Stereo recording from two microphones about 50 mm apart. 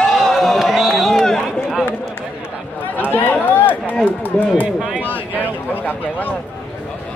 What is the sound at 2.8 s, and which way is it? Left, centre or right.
Run, left.